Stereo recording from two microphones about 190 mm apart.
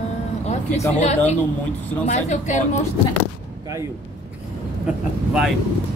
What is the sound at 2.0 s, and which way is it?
Speech, 40° left (ahead or behind).